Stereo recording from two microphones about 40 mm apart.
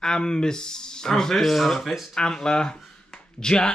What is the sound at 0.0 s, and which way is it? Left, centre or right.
Speech, centre.